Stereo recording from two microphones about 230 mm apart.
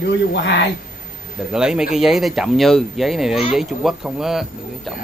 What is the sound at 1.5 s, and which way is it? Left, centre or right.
Speech, centre.